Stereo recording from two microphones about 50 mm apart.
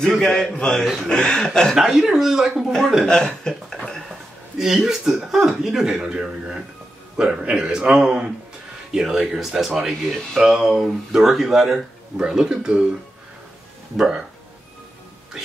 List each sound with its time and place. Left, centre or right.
0.2 s speech: centre
1.8 s speech: centre
2.6 s a man's voice: centre
3.1 s a sound: centre
4.6 s speech: centre
13.9 s speech: centre
15.3 s speech: centre